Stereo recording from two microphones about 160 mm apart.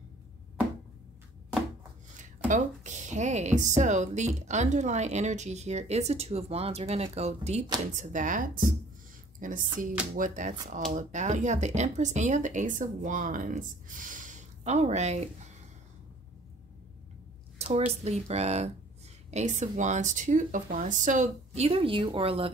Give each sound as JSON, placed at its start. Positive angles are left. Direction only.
{"t": 2.4, "sound": "speech", "side_deg": -50}
{"t": 17.7, "sound": "speech", "side_deg": -40}